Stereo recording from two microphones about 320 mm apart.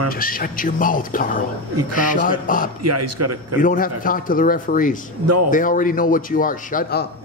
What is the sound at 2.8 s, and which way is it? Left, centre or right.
Speech, right.